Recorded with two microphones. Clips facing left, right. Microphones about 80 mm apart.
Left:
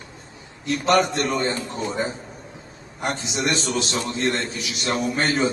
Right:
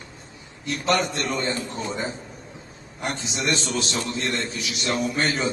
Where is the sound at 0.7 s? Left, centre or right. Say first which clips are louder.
Left 4 dB; left.